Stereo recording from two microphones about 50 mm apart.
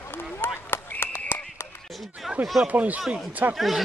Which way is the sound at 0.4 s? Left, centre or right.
Left.